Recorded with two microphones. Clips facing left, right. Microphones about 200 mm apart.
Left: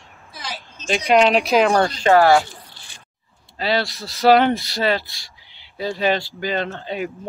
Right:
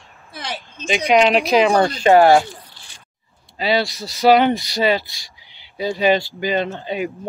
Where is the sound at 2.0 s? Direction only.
15° right (ahead or behind).